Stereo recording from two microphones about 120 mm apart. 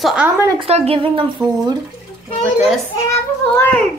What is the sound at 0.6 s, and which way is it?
Speech, 55° right (ahead or behind).